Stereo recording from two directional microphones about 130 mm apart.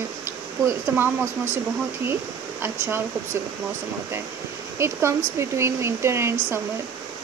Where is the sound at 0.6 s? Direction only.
20° right (ahead or behind).